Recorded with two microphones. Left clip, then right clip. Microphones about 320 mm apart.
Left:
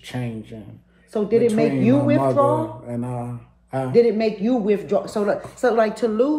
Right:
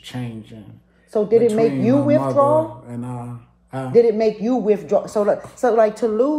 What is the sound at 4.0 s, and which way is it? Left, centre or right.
Speech, right.